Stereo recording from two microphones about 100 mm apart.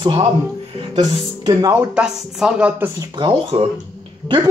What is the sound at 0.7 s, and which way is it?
Music, 65° right (ahead or behind).